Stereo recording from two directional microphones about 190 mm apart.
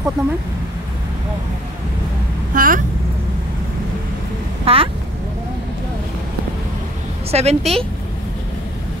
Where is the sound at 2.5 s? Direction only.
45° right (ahead or behind).